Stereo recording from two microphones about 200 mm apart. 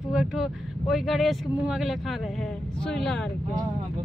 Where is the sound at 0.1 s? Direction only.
5° right (ahead or behind).